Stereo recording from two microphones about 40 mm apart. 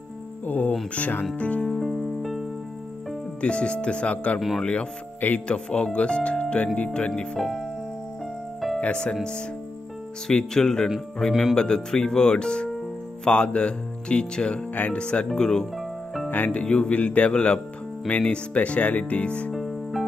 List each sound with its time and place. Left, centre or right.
0.5 s speech: left
1.7 s music: centre
3.3 s speech: left
7.3 s speech: centre
8.8 s speech: left
10.2 s speech: centre
16.3 s speech: left
16.5 s speech: left
19.5 s music: centre